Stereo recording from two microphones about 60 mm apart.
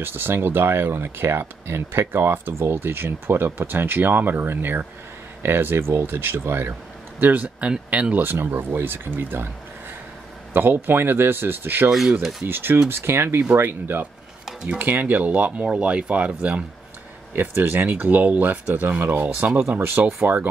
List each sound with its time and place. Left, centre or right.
0.0 s speech: right
8.2 s speech: right
10.5 s speech: right
11.9 s speech: centre
12.4 s speech: right
17.4 s speech: right